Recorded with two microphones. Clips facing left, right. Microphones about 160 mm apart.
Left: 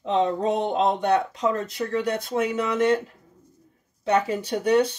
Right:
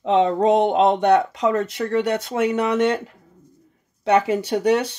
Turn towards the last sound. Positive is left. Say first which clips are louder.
# right 2 dB
turn(degrees=-85)